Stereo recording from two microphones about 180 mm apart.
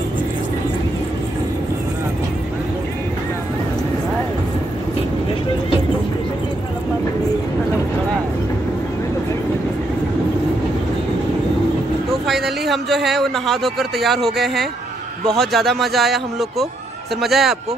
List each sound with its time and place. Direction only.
12.3 s a man's voice: centre (ahead or behind)